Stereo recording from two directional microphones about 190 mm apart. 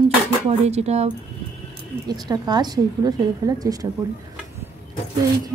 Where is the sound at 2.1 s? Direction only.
20° right (ahead or behind).